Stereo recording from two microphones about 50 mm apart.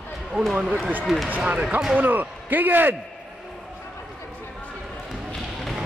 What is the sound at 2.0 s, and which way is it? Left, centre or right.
Speech, right.